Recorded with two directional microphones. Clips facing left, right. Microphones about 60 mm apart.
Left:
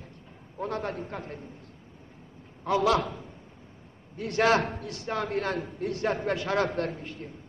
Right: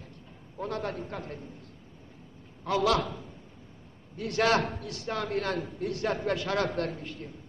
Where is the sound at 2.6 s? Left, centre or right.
Left.